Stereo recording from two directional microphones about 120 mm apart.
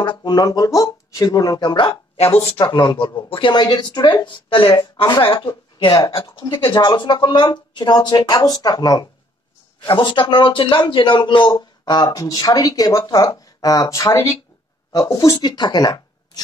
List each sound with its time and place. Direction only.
0.0 s speech: 40° left (ahead or behind)
5.9 s speech: 30° left (ahead or behind)
6.3 s speech: 40° left (ahead or behind)